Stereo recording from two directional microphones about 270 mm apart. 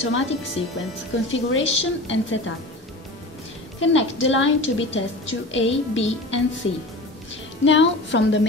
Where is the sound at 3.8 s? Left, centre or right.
Left.